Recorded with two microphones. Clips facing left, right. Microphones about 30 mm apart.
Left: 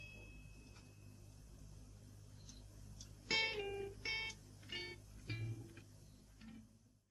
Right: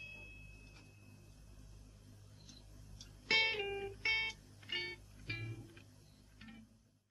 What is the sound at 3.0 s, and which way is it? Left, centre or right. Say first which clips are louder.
Music: right 6 dB; right.